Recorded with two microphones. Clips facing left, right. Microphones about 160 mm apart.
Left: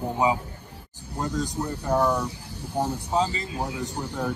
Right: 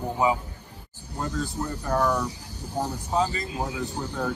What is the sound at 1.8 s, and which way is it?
Speech, 10° left (ahead or behind).